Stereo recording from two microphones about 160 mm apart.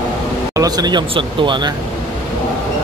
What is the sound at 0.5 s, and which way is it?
Speech, 25° right (ahead or behind).